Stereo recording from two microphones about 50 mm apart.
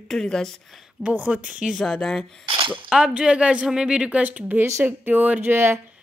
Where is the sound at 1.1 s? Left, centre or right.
Right.